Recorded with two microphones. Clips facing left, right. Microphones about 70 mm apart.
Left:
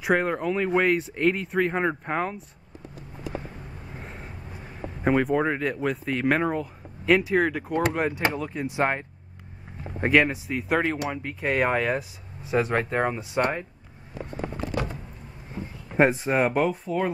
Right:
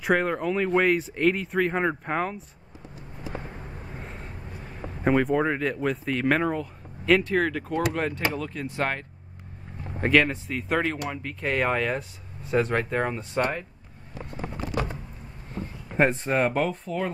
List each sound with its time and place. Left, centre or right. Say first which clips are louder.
0.0 s speech: even; centre
3.9 s speech: left 2 dB; centre
15.6 s a sound: right 1 dB; centre
15.9 s speech: left 2 dB; centre